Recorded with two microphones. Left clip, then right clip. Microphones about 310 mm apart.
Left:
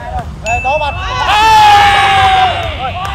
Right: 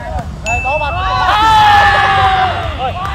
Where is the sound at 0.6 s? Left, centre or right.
Left.